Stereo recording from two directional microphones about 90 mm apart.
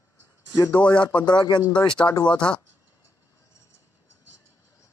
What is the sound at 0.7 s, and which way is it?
Speech, 15° left (ahead or behind).